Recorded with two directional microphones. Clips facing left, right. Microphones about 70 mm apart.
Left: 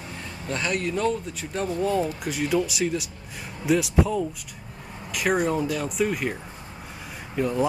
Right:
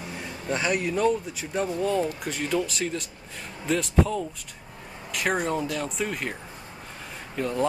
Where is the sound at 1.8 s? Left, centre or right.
Centre.